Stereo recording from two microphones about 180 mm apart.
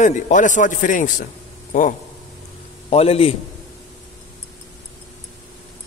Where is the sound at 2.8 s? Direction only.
35° left (ahead or behind).